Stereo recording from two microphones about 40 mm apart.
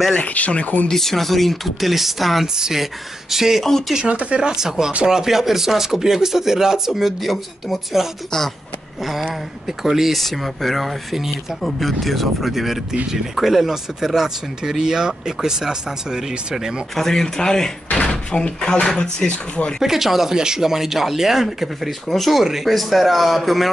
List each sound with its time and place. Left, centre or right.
0.2 s speech: left
0.8 s speech: centre
2.4 s speech: centre
4.0 s speech: right
4.5 s speech: centre
9.7 s speech: centre
10.1 s speech: centre
16.9 s speech: centre
17.9 s door: left
18.9 s speech: left
19.8 s speech: centre